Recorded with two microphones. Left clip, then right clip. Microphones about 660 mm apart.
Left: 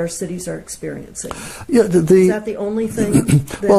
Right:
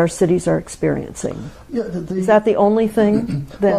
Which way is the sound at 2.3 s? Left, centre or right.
Right.